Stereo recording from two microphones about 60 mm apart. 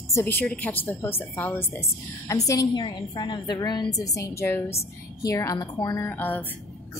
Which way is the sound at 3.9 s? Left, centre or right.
Left.